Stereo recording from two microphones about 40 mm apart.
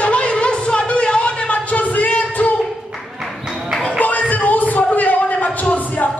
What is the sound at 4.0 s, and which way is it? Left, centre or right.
Music, left.